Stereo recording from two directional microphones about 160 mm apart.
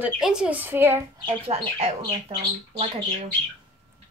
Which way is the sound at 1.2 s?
35° right (ahead or behind).